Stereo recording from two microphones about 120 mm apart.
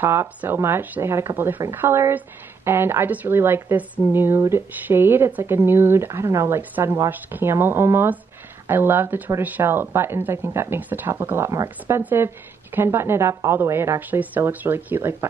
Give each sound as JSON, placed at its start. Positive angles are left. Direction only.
{"t": 0.0, "sound": "a woman's voice", "side_deg": -20}